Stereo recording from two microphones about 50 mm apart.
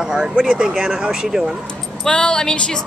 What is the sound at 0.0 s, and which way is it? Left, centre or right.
Speech, centre.